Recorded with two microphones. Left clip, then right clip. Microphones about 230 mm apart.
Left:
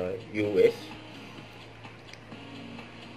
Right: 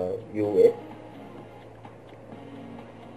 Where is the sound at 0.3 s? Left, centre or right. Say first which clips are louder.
Right 3 dB; left.